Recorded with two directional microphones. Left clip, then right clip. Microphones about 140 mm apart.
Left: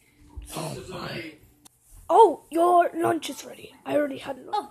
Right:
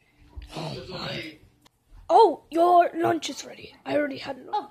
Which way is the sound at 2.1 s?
Centre (ahead or behind).